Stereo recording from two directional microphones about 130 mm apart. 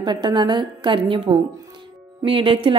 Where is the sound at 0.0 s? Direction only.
35° right (ahead or behind).